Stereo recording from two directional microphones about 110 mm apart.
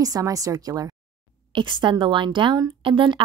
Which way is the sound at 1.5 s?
45° right (ahead or behind).